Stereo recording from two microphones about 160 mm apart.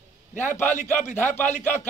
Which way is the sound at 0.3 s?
50° left (ahead or behind).